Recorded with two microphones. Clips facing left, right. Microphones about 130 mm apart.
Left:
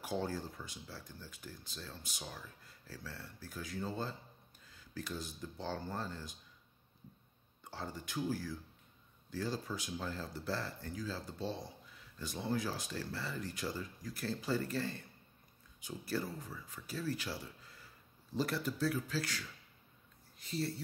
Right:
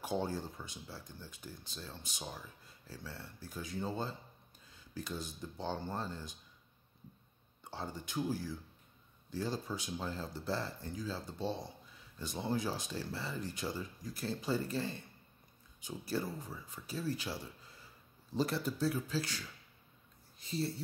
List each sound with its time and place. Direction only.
0.0 s speech: 20° right (ahead or behind)
7.7 s speech: 20° right (ahead or behind)